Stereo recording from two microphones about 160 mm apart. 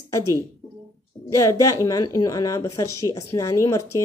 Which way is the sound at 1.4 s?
20° left (ahead or behind).